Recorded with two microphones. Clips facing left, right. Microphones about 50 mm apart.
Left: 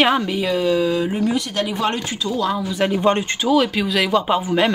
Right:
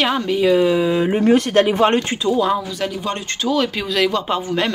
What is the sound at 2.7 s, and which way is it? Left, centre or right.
Speech, left.